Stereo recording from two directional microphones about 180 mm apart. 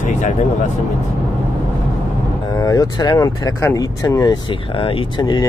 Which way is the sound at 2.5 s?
20° left (ahead or behind).